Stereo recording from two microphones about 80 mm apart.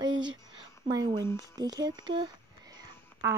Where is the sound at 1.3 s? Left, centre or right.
Right.